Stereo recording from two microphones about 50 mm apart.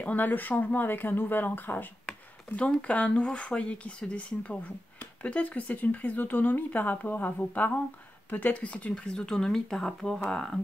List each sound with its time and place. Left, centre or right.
0.0 s speech: left
2.0 s speech: left
8.9 s speech: centre